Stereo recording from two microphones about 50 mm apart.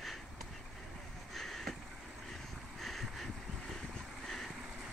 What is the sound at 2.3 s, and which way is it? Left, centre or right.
Vehicle, centre.